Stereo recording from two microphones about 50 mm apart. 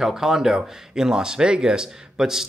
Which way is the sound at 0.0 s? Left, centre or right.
Centre.